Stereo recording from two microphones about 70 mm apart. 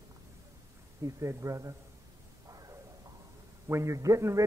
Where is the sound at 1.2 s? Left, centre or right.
Right.